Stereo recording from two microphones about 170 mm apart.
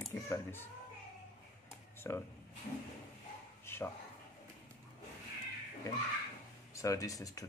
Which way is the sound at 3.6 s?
15° left (ahead or behind).